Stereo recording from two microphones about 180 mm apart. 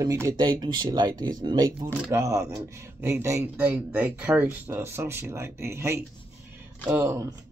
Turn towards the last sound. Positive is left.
turn(degrees=-15)  # may be behind; listen again after turning